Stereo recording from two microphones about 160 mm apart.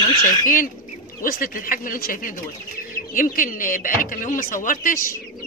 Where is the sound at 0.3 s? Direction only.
60° left (ahead or behind).